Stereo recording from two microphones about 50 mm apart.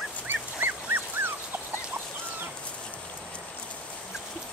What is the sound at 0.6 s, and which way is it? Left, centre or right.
Dog, right.